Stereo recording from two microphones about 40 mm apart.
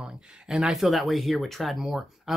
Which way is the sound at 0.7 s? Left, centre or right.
Centre.